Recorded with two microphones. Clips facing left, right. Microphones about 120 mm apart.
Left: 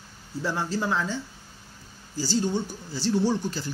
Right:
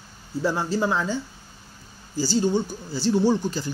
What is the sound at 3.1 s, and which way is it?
Speech, 25° right (ahead or behind).